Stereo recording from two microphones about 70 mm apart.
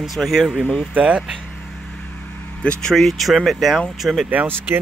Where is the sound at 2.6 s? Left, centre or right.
Centre.